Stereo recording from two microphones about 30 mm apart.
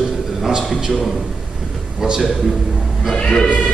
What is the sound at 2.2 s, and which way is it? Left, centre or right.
Speech, centre.